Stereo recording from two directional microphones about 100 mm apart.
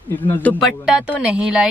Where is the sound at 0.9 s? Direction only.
10° right (ahead or behind).